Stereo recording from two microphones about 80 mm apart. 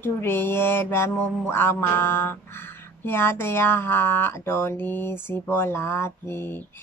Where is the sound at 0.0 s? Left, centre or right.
Left.